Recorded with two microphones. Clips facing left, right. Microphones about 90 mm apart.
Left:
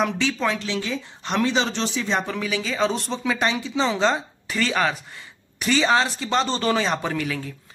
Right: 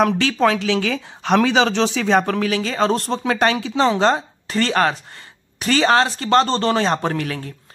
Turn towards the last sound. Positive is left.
turn(degrees=-50)  # may be behind; listen again after turning